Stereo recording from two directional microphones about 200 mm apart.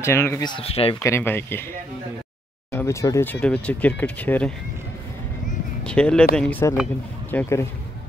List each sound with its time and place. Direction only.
0.0 s speech: 15° left (ahead or behind); by 0.9 s 30° left (ahead or behind)
1.0 s speech: 10° left (ahead or behind)
5.9 s speech: 5° left (ahead or behind)